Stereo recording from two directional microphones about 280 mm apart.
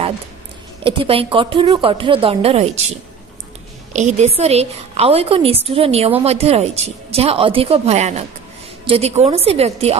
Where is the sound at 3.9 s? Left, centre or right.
Right.